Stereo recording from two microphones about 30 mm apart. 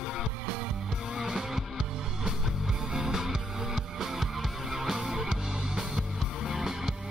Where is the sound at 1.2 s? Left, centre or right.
Centre.